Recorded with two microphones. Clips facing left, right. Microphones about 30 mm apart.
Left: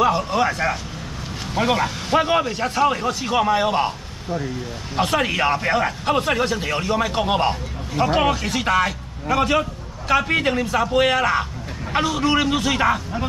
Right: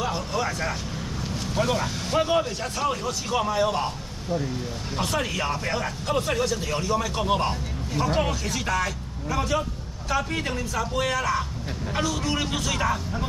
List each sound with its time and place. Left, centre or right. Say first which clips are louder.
0.0 s speech: left 9 dB; left